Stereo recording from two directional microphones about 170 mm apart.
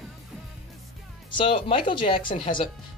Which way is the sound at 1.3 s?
30° left (ahead or behind).